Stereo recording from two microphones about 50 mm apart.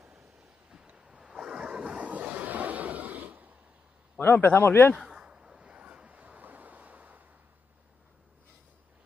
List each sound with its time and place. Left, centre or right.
0.0 s vehicle: centre
0.9 s waves: centre; by 3.5 s right
4.2 s a man's voice: left
5.0 s waves: centre; by 7.2 s right